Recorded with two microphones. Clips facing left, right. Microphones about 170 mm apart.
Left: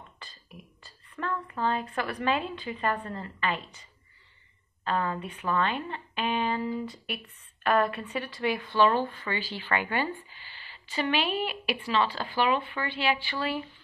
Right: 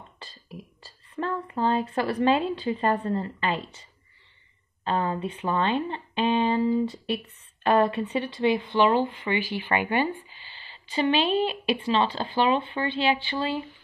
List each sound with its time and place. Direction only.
0.8 s a woman's voice: 30° right (ahead or behind)
4.8 s speech: 25° right (ahead or behind)